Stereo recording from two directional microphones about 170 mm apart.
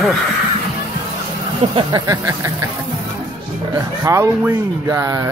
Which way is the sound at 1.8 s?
25° right (ahead or behind).